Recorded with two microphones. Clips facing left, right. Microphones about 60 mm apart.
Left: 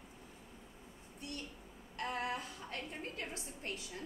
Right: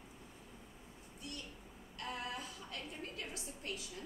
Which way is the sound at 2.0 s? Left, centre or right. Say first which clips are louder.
Left 5 dB; left.